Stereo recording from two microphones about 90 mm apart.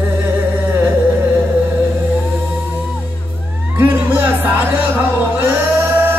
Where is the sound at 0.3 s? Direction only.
25° right (ahead or behind).